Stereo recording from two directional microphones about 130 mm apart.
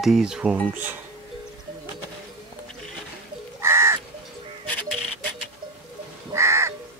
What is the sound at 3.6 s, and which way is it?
Crow, 20° right (ahead or behind).